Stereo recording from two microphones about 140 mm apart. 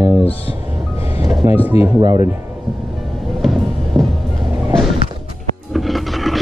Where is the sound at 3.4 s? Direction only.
Centre (ahead or behind).